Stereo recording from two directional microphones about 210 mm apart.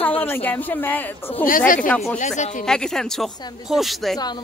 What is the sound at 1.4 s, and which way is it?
Speech, 40° left (ahead or behind).